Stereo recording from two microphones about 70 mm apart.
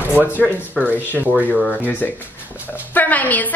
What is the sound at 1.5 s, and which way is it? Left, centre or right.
A woman's voice, left.